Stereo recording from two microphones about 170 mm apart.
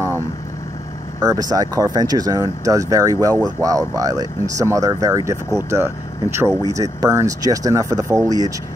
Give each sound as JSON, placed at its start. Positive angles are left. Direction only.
{"t": 1.2, "sound": "speech", "side_deg": -20}